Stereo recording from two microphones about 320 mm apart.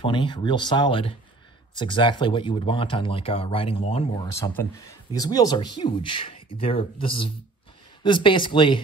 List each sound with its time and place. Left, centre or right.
0.0 s speech: centre